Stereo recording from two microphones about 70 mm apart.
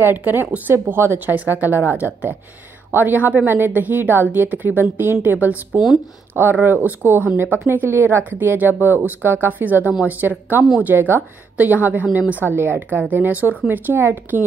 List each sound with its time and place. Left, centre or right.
0.0 s a woman's voice: right
1.3 s a woman's voice: right
12.3 s speech: left
12.5 s a woman's voice: right